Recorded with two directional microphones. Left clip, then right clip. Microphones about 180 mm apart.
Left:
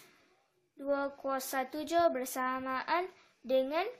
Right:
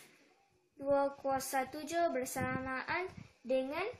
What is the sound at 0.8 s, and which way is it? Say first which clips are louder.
A woman's voice: right 1 dB; 50° left (ahead or behind).